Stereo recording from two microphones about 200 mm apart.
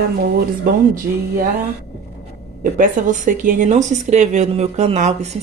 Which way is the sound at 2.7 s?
40° right (ahead or behind).